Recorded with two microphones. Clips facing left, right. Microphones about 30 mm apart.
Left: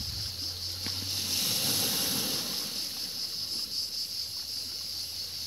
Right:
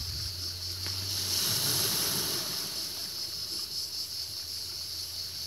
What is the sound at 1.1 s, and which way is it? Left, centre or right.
Boat, left.